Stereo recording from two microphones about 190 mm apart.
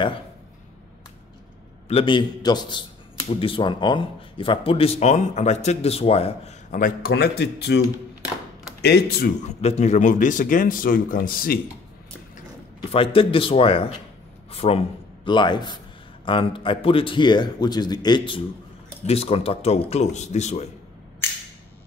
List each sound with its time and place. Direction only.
1.9 s a man's voice: 30° left (ahead or behind); by 7.8 s 60° left (ahead or behind)
8.8 s speech: 55° left (ahead or behind)
9.4 s speech: 35° left (ahead or behind)
12.9 s a man's voice: 30° left (ahead or behind)